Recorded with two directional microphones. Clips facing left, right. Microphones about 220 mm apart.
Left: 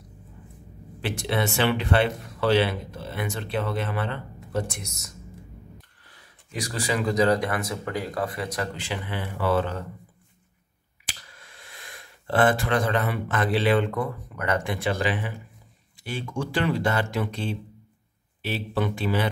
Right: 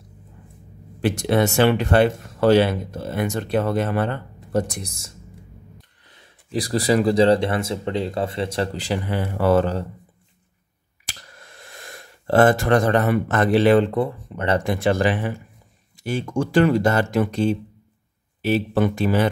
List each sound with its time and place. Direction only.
1.0 s speech: 45° right (ahead or behind)
6.5 s speech: 35° right (ahead or behind)
11.1 s speech: 45° right (ahead or behind)
14.7 s speech: 45° right (ahead or behind)